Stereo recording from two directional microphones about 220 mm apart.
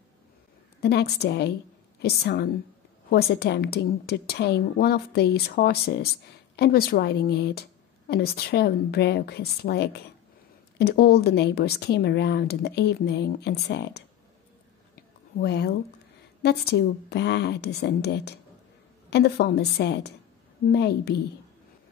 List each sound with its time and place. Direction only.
0.7 s a woman's voice: 45° left (ahead or behind)
15.3 s a woman's voice: 50° left (ahead or behind)